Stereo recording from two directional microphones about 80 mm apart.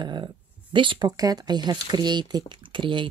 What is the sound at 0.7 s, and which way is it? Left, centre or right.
Speech, right.